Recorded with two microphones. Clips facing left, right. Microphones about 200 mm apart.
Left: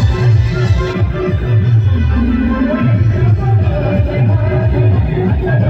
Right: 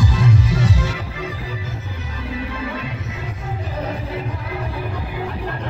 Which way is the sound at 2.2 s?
60° left (ahead or behind).